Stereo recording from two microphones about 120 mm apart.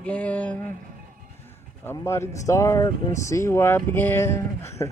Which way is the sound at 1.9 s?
25° left (ahead or behind).